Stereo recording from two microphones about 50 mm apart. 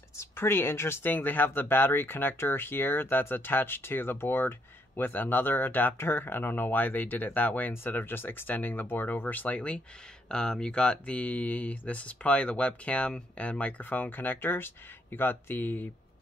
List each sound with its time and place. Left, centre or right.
0.4 s speech: left
7.7 s speech: left
10.2 s speech: centre; by 15.9 s left